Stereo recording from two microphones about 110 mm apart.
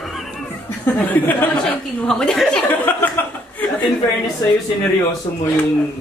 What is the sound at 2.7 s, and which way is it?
Speech, 20° left (ahead or behind).